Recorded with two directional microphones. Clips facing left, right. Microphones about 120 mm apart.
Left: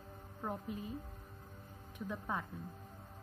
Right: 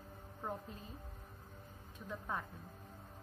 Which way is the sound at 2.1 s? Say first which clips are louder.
Left 2 dB; 15° left (ahead or behind).